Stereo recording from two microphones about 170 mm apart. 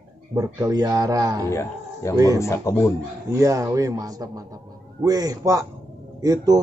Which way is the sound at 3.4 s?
20° right (ahead or behind).